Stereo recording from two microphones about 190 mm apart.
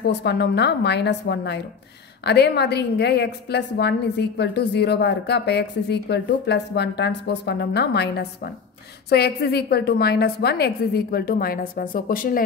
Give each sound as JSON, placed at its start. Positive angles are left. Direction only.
{"t": 0.0, "sound": "a woman's voice", "side_deg": 60}